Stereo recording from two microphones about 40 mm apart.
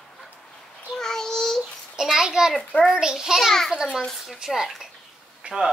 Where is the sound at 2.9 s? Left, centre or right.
Centre.